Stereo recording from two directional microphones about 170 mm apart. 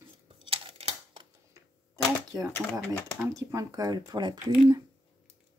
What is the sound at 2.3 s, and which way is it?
Speech, 15° right (ahead or behind).